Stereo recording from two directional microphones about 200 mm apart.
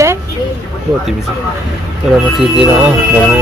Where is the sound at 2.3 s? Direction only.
Centre (ahead or behind).